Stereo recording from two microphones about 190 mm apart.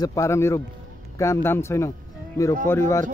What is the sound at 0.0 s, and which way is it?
A man's voice, 15° left (ahead or behind).